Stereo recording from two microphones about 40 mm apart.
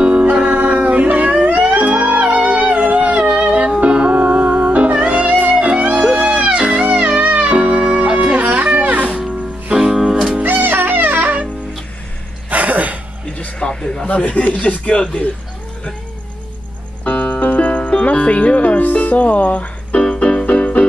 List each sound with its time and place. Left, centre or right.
0.0 s music: right
3.3 s music: right
7.5 s music: right
8.4 s music: right
9.8 s music: centre
10.4 s music: right
12.4 s a sound: right
13.6 s a sound: left
14.0 s speech: left
17.0 s music: left
20.0 s music: left